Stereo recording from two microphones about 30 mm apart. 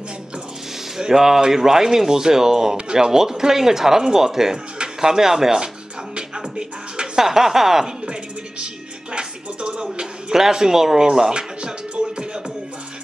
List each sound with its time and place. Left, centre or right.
0.9 s speech: centre
6.1 s music: right
7.2 s speech: centre
8.0 s music: right
10.3 s speech: centre
11.1 s speech: right